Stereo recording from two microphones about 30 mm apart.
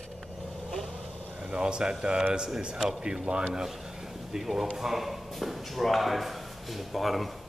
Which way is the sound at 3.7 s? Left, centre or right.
Centre.